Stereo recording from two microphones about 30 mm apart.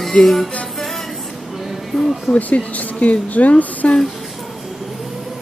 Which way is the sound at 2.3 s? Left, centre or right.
Left.